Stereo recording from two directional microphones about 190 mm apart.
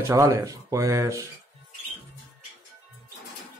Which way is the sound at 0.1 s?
15° right (ahead or behind).